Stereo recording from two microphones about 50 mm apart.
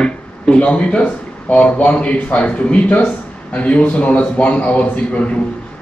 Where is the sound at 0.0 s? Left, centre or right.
Left.